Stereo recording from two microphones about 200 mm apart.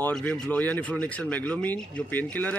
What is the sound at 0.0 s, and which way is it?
A man's voice, 5° left (ahead or behind).